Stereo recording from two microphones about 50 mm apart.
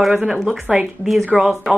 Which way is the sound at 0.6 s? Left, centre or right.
Right.